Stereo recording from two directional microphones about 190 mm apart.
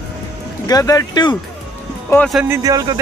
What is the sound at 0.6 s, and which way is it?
Speech, 20° left (ahead or behind).